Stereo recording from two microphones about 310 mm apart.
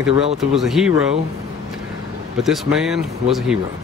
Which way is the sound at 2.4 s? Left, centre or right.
Centre.